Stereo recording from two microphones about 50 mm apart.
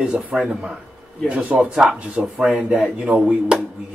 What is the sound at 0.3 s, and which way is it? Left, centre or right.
Speech, centre.